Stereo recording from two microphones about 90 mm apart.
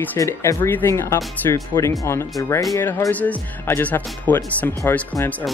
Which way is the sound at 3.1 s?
15° left (ahead or behind).